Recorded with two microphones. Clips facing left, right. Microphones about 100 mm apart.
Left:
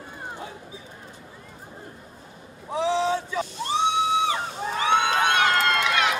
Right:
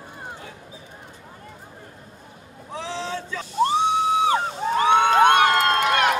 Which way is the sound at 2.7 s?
15° left (ahead or behind).